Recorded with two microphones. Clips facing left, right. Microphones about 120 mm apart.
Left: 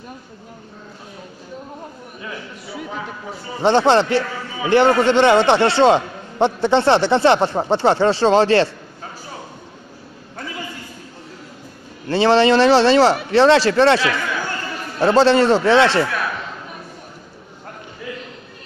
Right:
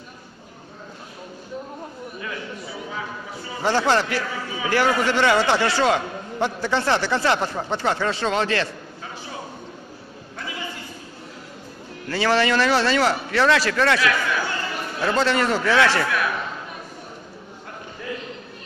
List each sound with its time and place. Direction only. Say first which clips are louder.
3.6 s a man's voice: left 6 dB; 25° left (ahead or behind)
12.1 s a man's voice: left 7 dB; 25° left (ahead or behind)